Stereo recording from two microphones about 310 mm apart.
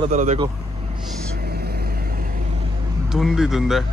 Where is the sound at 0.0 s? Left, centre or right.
Right.